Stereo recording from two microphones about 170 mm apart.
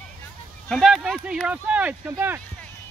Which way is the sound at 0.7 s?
Centre (ahead or behind).